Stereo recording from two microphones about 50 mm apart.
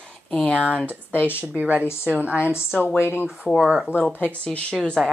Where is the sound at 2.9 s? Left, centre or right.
Left.